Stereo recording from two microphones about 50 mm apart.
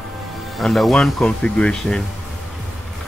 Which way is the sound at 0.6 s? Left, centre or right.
Centre.